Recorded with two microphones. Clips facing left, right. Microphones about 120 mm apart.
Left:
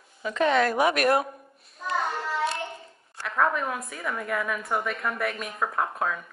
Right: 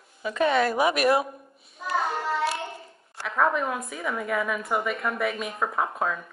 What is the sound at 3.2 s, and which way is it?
A woman's voice, centre (ahead or behind).